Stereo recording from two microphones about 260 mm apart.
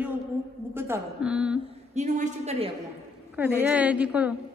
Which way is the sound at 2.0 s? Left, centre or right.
Right.